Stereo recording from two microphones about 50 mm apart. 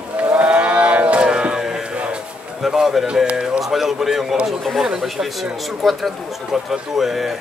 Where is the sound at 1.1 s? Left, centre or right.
Centre.